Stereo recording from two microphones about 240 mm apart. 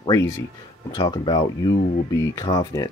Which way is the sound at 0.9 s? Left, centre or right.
Centre.